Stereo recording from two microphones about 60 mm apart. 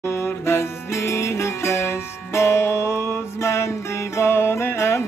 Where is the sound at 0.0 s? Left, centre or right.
Left.